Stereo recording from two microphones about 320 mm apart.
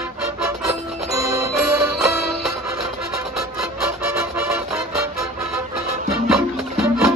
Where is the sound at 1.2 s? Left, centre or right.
Right.